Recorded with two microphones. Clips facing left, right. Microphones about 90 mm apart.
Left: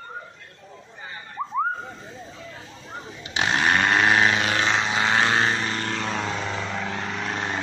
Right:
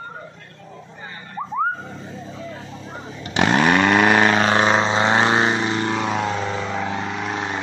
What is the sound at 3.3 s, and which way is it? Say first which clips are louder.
Chainsaw: right 5 dB; 65° right (ahead or behind).